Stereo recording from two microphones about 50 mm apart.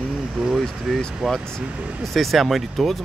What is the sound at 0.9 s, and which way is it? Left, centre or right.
Speech, centre.